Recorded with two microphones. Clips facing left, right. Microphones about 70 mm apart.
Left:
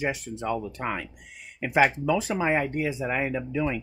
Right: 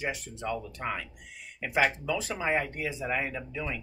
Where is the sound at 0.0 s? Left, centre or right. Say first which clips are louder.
Left 5 dB; centre.